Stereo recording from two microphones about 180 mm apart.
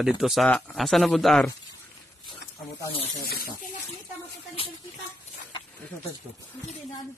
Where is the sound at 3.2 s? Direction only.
55° left (ahead or behind).